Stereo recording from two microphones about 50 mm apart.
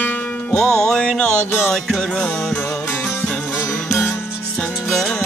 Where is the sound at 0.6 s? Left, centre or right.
Centre.